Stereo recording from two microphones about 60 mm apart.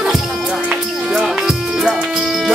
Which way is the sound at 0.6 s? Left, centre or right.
Centre.